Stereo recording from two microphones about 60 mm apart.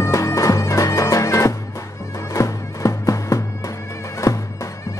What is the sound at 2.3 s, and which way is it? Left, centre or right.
Music, left.